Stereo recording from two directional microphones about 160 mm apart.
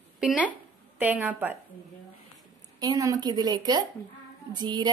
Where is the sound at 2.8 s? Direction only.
20° right (ahead or behind).